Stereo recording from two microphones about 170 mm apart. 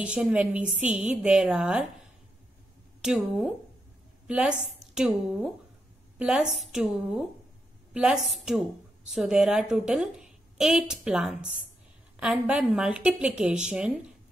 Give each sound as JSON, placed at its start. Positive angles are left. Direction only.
{"t": 0.0, "sound": "a woman's voice", "side_deg": -5}
{"t": 3.0, "sound": "a woman's voice", "side_deg": -5}